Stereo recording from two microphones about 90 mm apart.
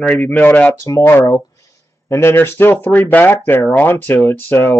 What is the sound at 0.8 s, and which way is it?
Speech, 30° left (ahead or behind).